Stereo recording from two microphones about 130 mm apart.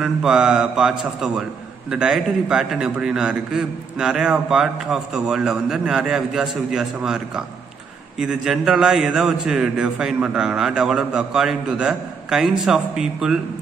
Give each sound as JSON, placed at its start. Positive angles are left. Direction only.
{"t": 0.0, "sound": "a man's voice", "side_deg": -5}